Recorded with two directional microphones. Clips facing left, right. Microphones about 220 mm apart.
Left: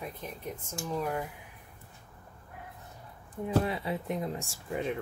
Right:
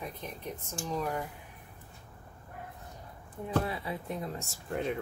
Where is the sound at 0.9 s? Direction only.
5° left (ahead or behind).